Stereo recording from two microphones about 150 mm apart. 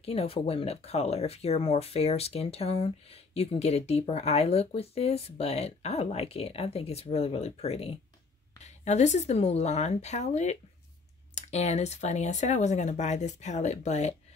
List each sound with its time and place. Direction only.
0.0 s speech: 40° left (ahead or behind)